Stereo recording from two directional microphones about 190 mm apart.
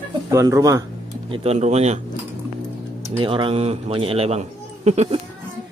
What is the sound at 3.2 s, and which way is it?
A man's voice, 25° right (ahead or behind).